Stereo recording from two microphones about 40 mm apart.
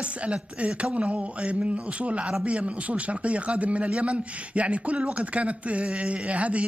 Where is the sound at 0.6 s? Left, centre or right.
Right.